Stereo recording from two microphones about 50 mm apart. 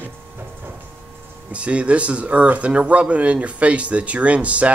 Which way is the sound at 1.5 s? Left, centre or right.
Right.